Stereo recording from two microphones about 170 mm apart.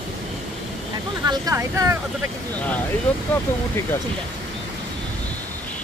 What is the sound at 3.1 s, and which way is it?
Speech, 10° left (ahead or behind).